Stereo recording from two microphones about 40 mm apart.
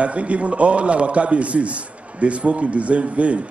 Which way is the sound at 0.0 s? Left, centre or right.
Right.